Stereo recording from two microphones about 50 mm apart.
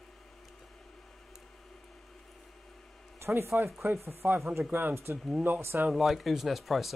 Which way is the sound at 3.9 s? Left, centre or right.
Right.